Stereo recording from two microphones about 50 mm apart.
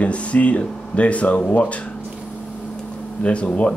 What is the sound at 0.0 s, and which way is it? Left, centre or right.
Speech, left.